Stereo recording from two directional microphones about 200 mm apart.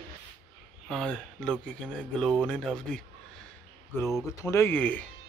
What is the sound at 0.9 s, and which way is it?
Speech, 5° left (ahead or behind).